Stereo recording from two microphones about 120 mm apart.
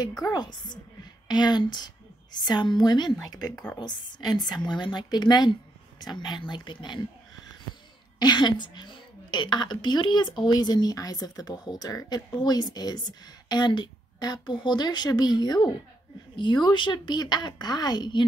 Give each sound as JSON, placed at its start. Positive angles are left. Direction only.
{"t": 0.2, "sound": "a woman's voice", "side_deg": 35}
{"t": 8.2, "sound": "a woman's voice", "side_deg": 40}